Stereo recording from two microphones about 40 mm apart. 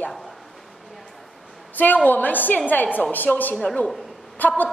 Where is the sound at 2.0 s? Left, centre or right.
Left.